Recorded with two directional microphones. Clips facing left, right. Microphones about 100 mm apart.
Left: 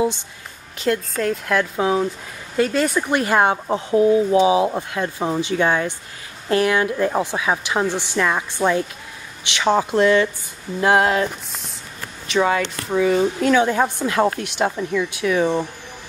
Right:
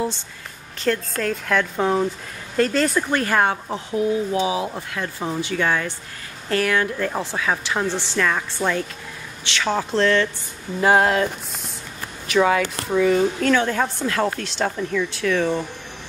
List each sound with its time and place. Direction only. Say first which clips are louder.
0.7 s speech: left 2 dB; 5° left (ahead or behind)
3.1 s speech: left 2 dB; 20° left (ahead or behind)
3.6 s speech: left 6 dB; 30° left (ahead or behind); by 10.3 s 10° left (ahead or behind)
10.8 s speech: even; centre (ahead or behind)
12.3 s speech: right 1 dB; centre (ahead or behind)